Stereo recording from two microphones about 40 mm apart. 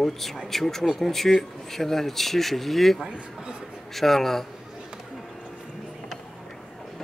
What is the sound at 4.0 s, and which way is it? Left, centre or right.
Speech, centre.